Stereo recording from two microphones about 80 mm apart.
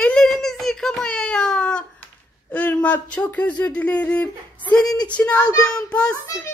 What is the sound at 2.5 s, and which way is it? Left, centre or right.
A child's voice, centre.